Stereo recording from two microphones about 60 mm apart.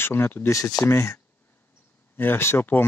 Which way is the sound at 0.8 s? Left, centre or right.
Left.